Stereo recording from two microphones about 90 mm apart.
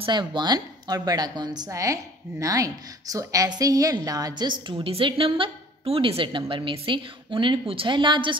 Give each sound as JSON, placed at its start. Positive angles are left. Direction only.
{"t": 0.0, "sound": "a woman's voice", "side_deg": -60}
{"t": 1.7, "sound": "a woman's voice", "side_deg": -35}